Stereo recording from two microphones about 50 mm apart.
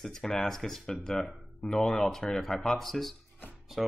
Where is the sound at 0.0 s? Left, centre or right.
Centre.